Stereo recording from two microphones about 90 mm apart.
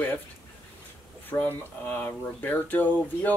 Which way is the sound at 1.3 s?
20° left (ahead or behind).